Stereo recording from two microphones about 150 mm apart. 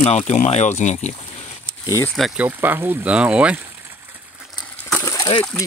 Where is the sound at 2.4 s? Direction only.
15° right (ahead or behind).